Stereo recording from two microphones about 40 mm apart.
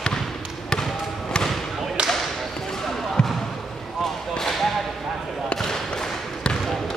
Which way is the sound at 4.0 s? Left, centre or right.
Centre.